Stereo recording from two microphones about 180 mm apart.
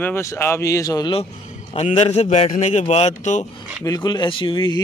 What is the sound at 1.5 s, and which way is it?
A man's voice, 40° left (ahead or behind).